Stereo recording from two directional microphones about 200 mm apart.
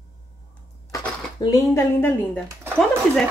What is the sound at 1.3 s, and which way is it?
Speech, 15° left (ahead or behind).